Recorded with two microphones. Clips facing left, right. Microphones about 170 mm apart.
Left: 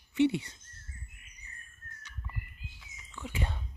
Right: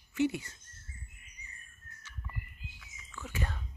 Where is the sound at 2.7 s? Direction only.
20° left (ahead or behind).